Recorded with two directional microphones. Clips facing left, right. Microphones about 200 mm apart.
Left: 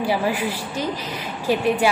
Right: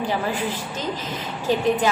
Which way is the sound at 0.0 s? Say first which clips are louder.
Left 3 dB; 10° left (ahead or behind).